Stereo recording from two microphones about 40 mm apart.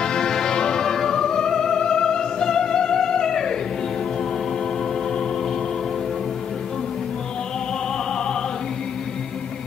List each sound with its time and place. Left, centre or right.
0.0 s music: centre